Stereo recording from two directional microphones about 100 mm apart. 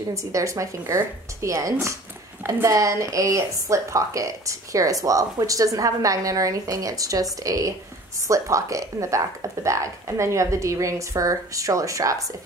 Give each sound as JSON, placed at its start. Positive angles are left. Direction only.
{"t": 0.1, "sound": "speech", "side_deg": -30}